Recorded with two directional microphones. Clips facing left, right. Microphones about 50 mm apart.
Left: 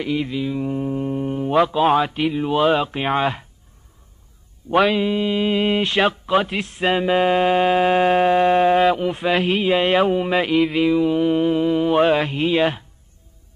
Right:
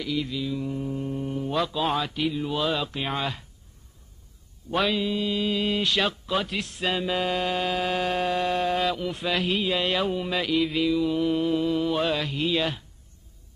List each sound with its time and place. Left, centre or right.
0.0 s speech: left
4.9 s speech: left